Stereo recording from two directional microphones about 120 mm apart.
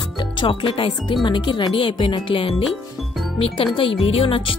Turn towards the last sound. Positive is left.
turn(degrees=45)  # may be behind; listen again after turning